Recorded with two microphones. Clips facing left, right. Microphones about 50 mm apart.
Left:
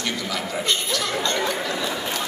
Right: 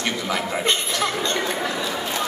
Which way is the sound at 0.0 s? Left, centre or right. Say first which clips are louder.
Right 3 dB; right.